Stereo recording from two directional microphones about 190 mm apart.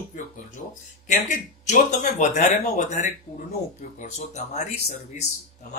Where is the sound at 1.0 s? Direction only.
40° left (ahead or behind).